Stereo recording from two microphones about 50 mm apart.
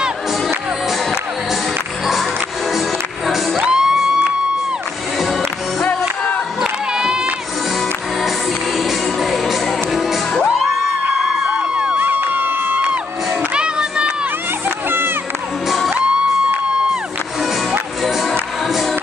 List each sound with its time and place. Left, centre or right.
3.5 s music: centre
6.6 s crowd: centre
8.7 s music: centre
11.4 s music: centre
12.0 s crowd: right
13.6 s a sound: centre
15.9 s music: centre